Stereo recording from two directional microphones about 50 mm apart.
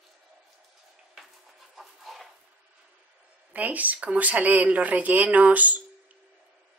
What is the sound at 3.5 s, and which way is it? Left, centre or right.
Speech, right.